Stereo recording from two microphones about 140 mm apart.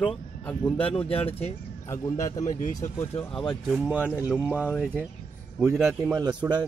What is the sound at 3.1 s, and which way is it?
Speech, 40° left (ahead or behind).